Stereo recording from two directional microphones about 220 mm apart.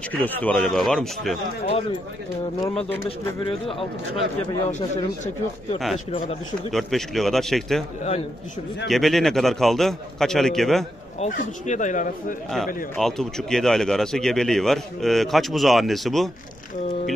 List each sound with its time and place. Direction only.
0.1 s speech: 5° left (ahead or behind)
1.7 s speech: 25° left (ahead or behind)
3.4 s speech: 25° left (ahead or behind)
6.7 s speech: centre (ahead or behind)
8.8 s speech: centre (ahead or behind)
11.1 s speech: 35° left (ahead or behind)
12.9 s speech: centre (ahead or behind)